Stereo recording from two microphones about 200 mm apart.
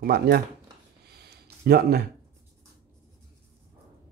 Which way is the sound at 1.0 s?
55° right (ahead or behind).